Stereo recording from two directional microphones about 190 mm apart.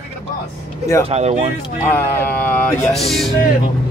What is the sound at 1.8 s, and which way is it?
Speech, 10° left (ahead or behind).